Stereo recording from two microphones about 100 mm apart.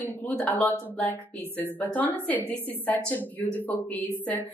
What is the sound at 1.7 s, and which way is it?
Speech, 15° left (ahead or behind).